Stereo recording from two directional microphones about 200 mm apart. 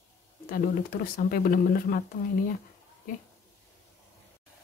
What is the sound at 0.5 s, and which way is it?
Speech, 50° left (ahead or behind).